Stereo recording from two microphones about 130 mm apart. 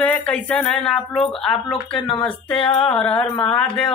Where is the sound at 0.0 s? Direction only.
10° left (ahead or behind).